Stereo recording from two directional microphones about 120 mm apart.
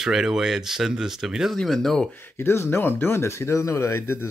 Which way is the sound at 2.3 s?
20° left (ahead or behind).